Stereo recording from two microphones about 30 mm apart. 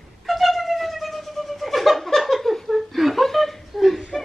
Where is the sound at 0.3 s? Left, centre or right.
Centre.